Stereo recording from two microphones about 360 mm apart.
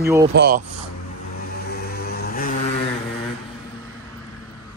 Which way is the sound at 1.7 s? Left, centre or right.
Left.